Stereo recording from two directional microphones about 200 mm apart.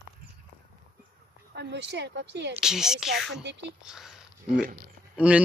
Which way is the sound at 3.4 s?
60° right (ahead or behind).